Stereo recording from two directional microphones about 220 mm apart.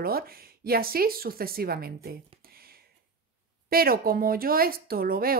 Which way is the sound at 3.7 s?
40° right (ahead or behind).